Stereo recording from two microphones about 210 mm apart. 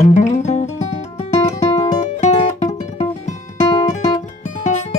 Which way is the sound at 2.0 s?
35° left (ahead or behind).